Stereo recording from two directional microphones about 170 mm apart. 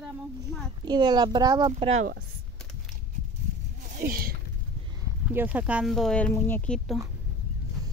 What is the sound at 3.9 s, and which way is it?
Speech, 60° right (ahead or behind).